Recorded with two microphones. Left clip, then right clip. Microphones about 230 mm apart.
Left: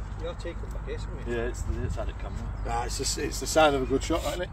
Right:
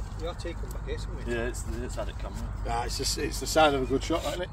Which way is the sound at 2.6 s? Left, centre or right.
Centre.